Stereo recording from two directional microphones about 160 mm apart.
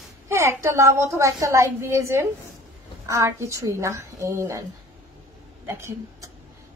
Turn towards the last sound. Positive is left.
turn(degrees=-20)  # may be behind; listen again after turning